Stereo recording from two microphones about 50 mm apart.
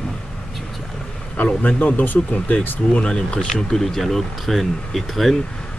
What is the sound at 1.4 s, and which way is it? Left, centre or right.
Speech, left.